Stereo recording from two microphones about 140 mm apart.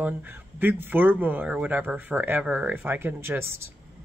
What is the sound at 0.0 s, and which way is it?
Speech, 15° right (ahead or behind).